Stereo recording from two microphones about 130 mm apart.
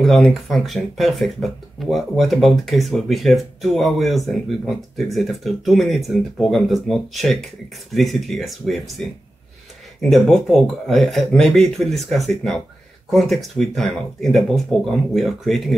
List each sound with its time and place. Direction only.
0.0 s speech: centre (ahead or behind)
10.0 s speech: centre (ahead or behind)